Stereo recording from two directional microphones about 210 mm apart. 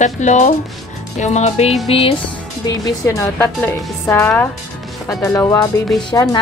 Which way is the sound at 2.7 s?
15° left (ahead or behind).